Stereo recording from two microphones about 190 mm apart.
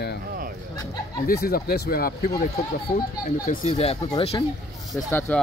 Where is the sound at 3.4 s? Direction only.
45° left (ahead or behind).